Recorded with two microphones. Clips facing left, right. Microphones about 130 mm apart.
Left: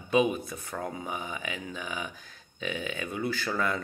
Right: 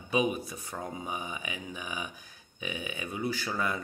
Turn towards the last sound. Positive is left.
turn(degrees=-15)  # may be behind; listen again after turning